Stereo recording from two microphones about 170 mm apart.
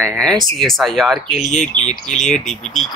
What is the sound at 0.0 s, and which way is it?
Speech, 5° left (ahead or behind).